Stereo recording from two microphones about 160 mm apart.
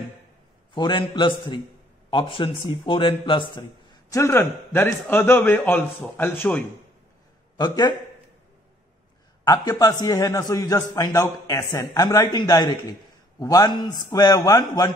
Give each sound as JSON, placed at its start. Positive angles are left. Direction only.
{"t": 0.7, "sound": "a man's voice", "side_deg": 30}
{"t": 4.2, "sound": "a man's voice", "side_deg": 15}
{"t": 7.5, "sound": "a man's voice", "side_deg": 25}
{"t": 9.4, "sound": "a man's voice", "side_deg": 20}